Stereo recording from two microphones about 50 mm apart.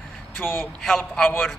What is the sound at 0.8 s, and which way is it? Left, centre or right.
Speech, centre.